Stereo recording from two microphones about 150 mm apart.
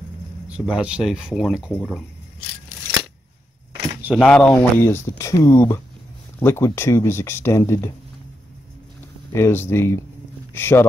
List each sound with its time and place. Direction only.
0.5 s speech: 5° right (ahead or behind)
4.2 s speech: 10° left (ahead or behind)
9.3 s speech: 15° left (ahead or behind)